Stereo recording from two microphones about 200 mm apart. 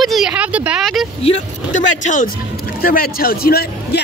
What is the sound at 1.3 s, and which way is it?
Speech, 35° left (ahead or behind).